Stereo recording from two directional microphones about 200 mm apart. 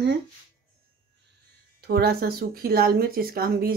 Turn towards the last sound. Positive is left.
turn(degrees=-50)  # may be behind; listen again after turning